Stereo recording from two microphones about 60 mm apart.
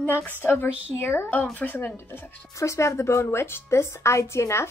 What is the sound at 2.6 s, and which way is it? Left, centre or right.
Speech, left.